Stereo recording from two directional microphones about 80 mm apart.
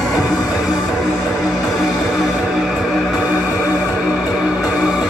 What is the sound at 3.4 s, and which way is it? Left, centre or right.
Music, centre.